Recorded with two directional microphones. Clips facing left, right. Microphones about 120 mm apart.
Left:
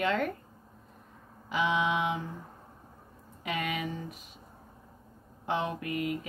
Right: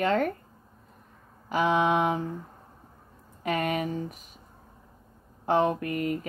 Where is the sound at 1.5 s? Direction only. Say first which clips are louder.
Right 5 dB; 45° right (ahead or behind).